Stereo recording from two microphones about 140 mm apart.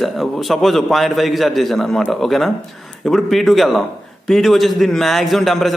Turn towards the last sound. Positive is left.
turn(degrees=0)  # may be behind; listen again after turning